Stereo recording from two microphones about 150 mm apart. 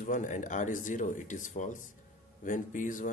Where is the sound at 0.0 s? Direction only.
60° left (ahead or behind).